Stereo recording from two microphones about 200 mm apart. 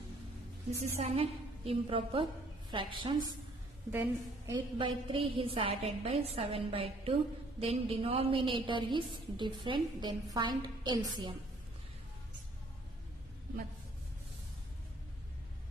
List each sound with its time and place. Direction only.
0.7 s a woman's voice: 30° right (ahead or behind)
3.9 s a woman's voice: 10° right (ahead or behind)
4.7 s a woman's voice: 25° right (ahead or behind)